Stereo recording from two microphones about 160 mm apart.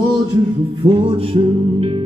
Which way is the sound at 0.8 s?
35° right (ahead or behind).